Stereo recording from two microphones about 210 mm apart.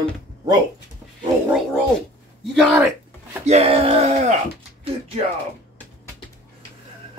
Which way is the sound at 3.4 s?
30° right (ahead or behind).